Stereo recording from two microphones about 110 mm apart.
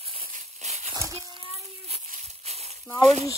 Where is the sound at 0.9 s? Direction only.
30° right (ahead or behind).